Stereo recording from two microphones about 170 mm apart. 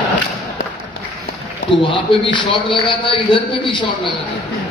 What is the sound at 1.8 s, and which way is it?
A man's voice, 30° left (ahead or behind).